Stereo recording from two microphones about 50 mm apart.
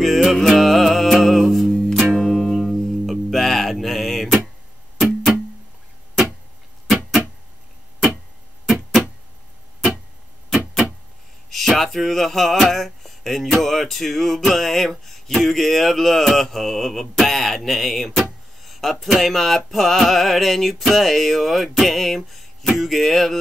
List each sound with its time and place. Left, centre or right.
0.0 s music: centre
1.7 s music: centre
2.0 s music: centre
8.6 s music: centre
11.5 s speech: centre
18.6 s music: centre